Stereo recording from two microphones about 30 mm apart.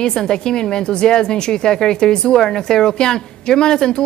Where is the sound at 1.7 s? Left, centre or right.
Centre.